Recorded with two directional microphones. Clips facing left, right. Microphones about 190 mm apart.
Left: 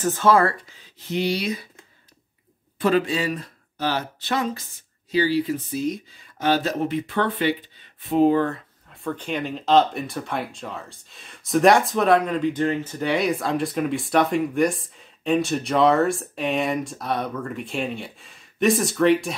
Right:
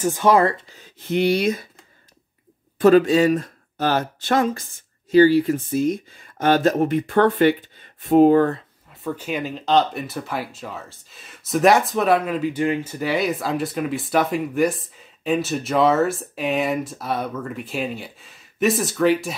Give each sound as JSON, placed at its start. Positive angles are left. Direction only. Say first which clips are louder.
{"t": 0.0, "sound": "speech", "louder": "right 2 dB", "side_deg": -15}
{"t": 0.7, "sound": "speech", "louder": "right 5 dB", "side_deg": -50}
{"t": 2.8, "sound": "speech", "louder": "right 7 dB", "side_deg": -45}
{"t": 8.9, "sound": "speech", "louder": "right 1 dB", "side_deg": -5}